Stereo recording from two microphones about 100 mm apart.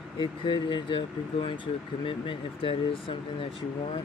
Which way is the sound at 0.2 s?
55° left (ahead or behind).